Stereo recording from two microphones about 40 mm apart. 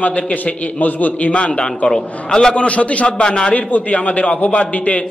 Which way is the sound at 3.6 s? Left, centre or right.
Left.